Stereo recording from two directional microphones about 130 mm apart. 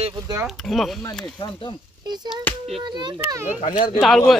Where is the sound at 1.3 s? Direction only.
40° left (ahead or behind).